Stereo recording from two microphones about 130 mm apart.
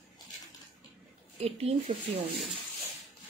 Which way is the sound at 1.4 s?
50° right (ahead or behind).